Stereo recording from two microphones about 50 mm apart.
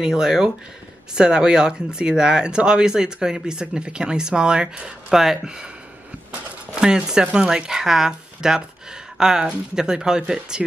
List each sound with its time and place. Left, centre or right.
0.0 s speech: centre
5.1 s speech: centre
5.4 s speech: centre
6.7 s speech: centre